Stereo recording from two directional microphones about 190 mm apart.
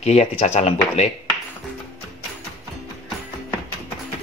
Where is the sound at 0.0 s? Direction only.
35° left (ahead or behind).